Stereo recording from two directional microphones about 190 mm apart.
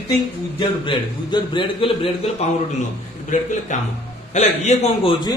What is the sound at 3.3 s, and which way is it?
A man's voice, 40° left (ahead or behind).